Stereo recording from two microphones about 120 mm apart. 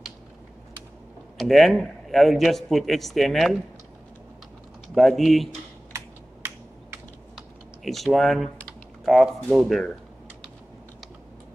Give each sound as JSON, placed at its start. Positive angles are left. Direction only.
{"t": 1.4, "sound": "a man's voice", "side_deg": 0}
{"t": 4.9, "sound": "a man's voice", "side_deg": 0}
{"t": 5.9, "sound": "computer keyboard", "side_deg": -20}
{"t": 7.3, "sound": "typing", "side_deg": 0}
{"t": 9.0, "sound": "a man's voice", "side_deg": 0}